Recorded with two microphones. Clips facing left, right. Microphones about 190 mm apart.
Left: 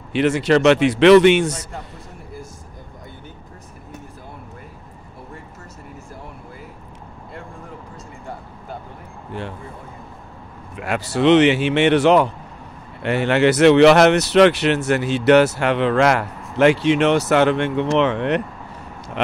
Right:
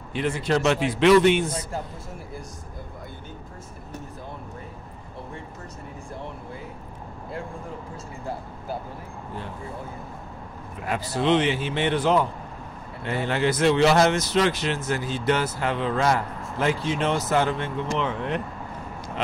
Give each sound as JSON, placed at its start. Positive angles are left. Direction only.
{"t": 0.1, "sound": "speech", "side_deg": 80}
{"t": 10.8, "sound": "speech", "side_deg": 75}